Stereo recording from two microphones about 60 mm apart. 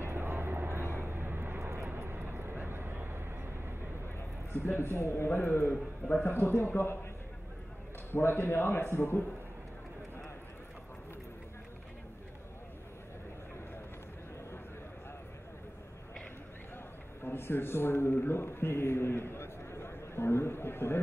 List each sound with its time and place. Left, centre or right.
0.0 s vehicle: right
1.6 s vehicle: right
2.0 s vehicle: right
4.6 s a man's voice: left
8.1 s a man's voice: left
16.7 s a man's voice: left